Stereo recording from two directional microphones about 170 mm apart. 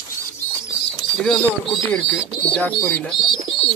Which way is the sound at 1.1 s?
Centre (ahead or behind).